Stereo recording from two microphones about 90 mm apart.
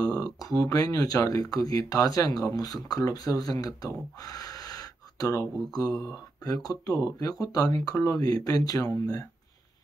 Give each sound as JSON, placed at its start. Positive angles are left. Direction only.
{"t": 0.0, "sound": "speech", "side_deg": 45}